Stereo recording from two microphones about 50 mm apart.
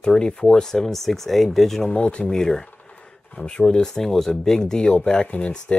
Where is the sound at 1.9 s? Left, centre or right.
Left.